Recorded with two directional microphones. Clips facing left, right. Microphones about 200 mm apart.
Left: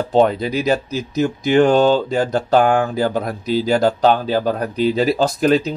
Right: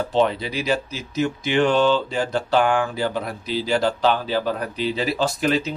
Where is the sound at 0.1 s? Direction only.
45° left (ahead or behind).